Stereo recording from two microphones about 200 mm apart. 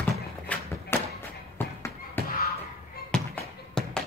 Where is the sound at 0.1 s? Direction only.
10° left (ahead or behind).